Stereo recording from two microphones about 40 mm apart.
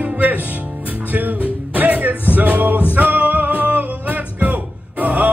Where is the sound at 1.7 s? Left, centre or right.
Right.